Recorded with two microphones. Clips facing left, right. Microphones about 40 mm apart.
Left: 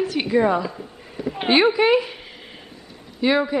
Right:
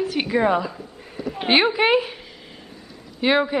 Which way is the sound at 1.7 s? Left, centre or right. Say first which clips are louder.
Left 1 dB; centre.